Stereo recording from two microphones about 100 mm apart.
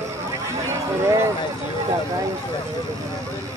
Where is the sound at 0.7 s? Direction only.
30° right (ahead or behind).